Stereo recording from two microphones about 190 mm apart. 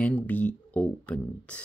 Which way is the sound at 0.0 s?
5° left (ahead or behind).